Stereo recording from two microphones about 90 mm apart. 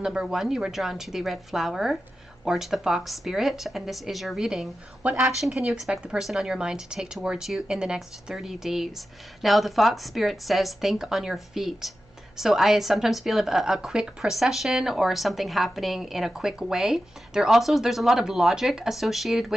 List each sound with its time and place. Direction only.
0.0 s a woman's voice: 10° right (ahead or behind)
5.0 s a woman's voice: 20° right (ahead or behind)
5.4 s a woman's voice: 5° right (ahead or behind)